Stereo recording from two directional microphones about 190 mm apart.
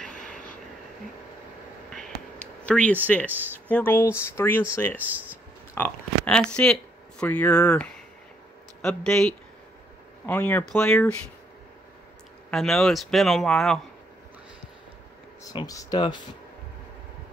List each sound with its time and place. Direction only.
1.9 s a sound: 5° left (ahead or behind)
2.6 s speech: 5° left (ahead or behind)
3.3 s speech: 10° right (ahead or behind)
3.6 s speech: 10° left (ahead or behind)
4.9 s speech: 10° right (ahead or behind)
5.8 s speech: 5° left (ahead or behind)
12.4 s speech: centre (ahead or behind)
15.5 s speech: 20° left (ahead or behind)